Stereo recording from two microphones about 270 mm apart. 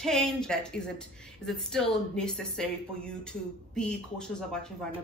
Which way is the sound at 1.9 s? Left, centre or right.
Centre.